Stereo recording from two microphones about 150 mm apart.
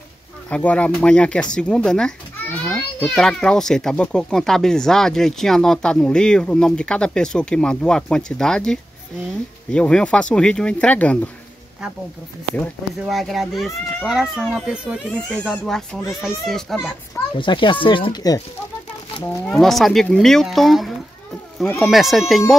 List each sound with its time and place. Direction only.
0.5 s speech: 10° left (ahead or behind)
13.0 s speech: centre (ahead or behind)
15.2 s speech: 5° left (ahead or behind)
17.4 s speech: 35° left (ahead or behind)
19.6 s speech: centre (ahead or behind)